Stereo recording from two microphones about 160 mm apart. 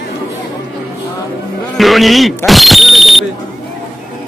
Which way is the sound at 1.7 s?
Centre (ahead or behind).